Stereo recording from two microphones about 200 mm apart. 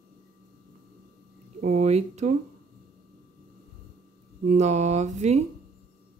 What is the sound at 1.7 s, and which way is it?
Speech, 35° right (ahead or behind).